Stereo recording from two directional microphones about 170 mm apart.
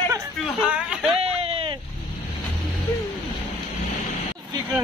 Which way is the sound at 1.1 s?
35° right (ahead or behind).